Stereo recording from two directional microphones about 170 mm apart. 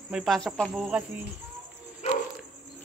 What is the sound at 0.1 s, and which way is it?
Speech, centre (ahead or behind).